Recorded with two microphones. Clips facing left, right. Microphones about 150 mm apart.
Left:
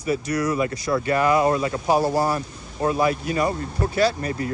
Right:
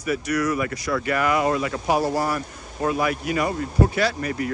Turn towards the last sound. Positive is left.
turn(degrees=30)  # may be behind; listen again after turning